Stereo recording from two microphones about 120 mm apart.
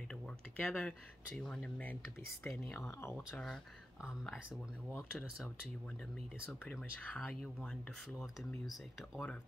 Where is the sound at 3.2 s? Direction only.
Centre (ahead or behind).